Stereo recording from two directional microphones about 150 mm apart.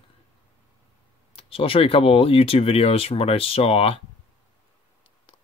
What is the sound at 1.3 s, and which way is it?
Speech, 40° left (ahead or behind).